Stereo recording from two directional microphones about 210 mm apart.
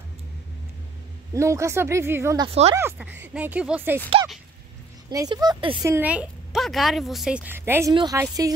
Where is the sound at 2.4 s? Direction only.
30° right (ahead or behind).